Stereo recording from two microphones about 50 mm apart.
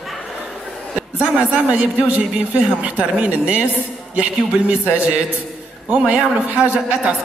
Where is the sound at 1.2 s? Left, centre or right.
Right.